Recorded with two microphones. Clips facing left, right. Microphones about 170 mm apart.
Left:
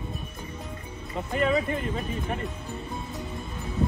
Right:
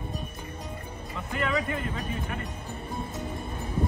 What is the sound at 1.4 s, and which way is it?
Speech, 30° left (ahead or behind).